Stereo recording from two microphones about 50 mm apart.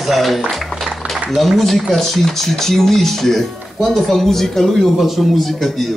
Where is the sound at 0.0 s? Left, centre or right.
Centre.